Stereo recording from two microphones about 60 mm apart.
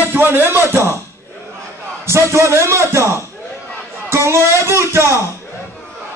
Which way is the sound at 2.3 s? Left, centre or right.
Right.